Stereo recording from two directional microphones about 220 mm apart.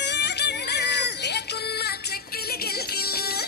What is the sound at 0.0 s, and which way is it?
Music, 50° left (ahead or behind).